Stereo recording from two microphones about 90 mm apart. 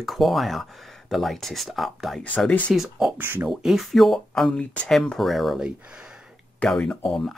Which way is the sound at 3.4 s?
5° right (ahead or behind).